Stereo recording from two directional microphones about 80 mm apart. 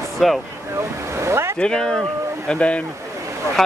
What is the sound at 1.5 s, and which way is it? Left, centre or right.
Speech, centre.